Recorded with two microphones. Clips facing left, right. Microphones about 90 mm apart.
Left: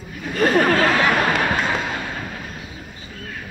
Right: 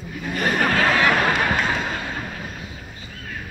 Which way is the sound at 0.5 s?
25° left (ahead or behind).